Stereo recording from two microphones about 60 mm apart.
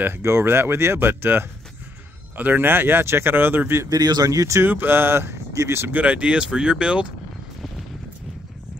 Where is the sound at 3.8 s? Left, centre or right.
Right.